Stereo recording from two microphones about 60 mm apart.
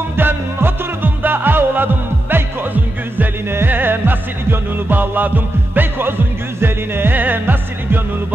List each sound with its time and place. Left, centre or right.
0.1 s music: right